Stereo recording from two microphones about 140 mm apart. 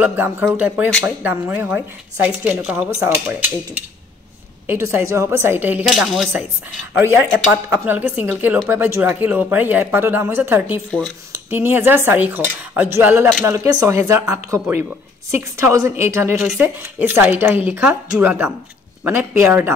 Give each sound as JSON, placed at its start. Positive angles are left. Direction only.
{"t": 0.0, "sound": "speech", "side_deg": -15}
{"t": 5.9, "sound": "speech", "side_deg": 0}
{"t": 7.0, "sound": "speech", "side_deg": -15}
{"t": 16.3, "sound": "speech", "side_deg": -5}
{"t": 16.6, "sound": "speech", "side_deg": -15}